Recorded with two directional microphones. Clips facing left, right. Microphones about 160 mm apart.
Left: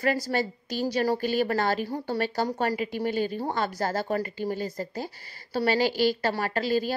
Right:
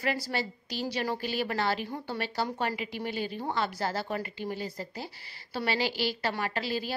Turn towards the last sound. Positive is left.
turn(degrees=45)  # may be behind; listen again after turning